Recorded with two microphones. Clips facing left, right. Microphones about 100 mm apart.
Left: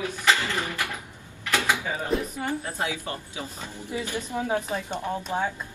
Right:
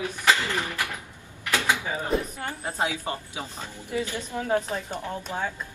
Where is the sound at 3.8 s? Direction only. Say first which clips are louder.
Right 1 dB; 20° left (ahead or behind).